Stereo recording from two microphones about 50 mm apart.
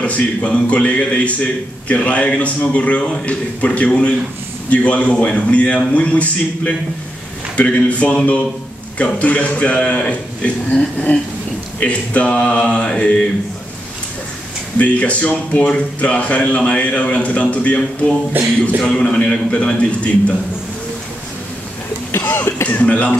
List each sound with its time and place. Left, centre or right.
0.0 s speech: left
11.1 s a sound: left
11.8 s speech: left
14.8 s speech: left
18.8 s speech: centre
22.1 s speech: left